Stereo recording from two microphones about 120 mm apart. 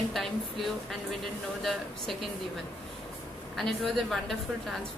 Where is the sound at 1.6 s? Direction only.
Centre (ahead or behind).